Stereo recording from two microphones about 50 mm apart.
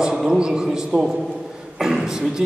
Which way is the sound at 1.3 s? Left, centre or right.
Centre.